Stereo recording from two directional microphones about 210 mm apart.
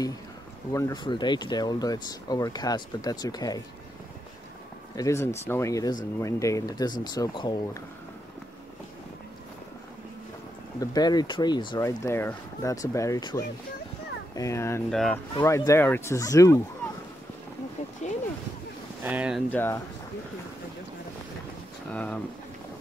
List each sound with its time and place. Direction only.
0.7 s speech: 15° left (ahead or behind)
4.9 s speech: 15° left (ahead or behind)
10.8 s speech: 20° left (ahead or behind)
14.9 s speech: 5° left (ahead or behind)
15.3 s speech: 15° left (ahead or behind)
19.0 s speech: 5° right (ahead or behind)
19.5 s speech: 10° left (ahead or behind)
21.9 s speech: 5° left (ahead or behind)